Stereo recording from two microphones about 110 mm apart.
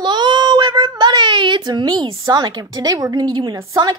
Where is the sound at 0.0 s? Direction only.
45° right (ahead or behind).